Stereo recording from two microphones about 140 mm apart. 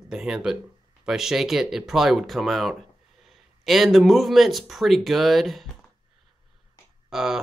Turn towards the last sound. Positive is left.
turn(degrees=-5)  # may be behind; listen again after turning